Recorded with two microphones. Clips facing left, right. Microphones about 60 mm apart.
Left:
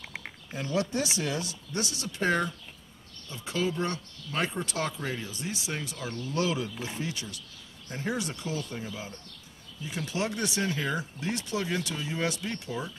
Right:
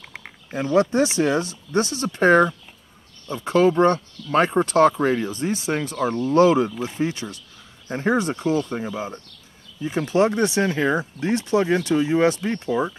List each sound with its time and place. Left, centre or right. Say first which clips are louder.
0.0 s a sound: right 1 dB; centre
0.5 s speech: right 11 dB; right
2.1 s speech: right 12 dB; right